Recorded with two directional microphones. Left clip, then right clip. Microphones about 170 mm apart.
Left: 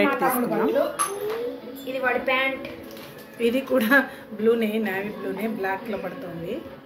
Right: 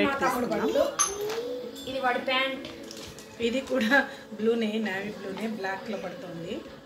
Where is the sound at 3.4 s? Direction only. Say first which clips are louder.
Left 5 dB; 10° left (ahead or behind).